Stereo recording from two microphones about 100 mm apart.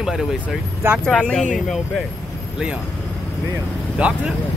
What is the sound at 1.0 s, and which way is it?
Speech, 10° left (ahead or behind).